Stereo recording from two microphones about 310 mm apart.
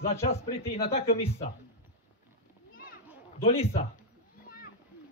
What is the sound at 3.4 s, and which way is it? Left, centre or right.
Speech, centre.